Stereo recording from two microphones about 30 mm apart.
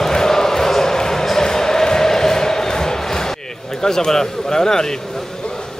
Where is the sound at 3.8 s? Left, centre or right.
Centre.